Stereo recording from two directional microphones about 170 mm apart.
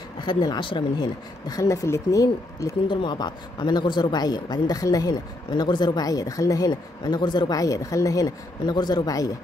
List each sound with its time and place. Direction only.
0.2 s speech: 25° left (ahead or behind)